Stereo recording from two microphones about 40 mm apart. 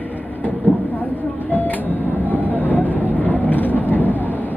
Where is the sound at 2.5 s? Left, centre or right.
Left.